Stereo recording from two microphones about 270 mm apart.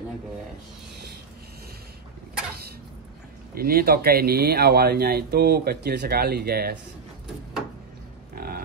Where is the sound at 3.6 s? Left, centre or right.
Right.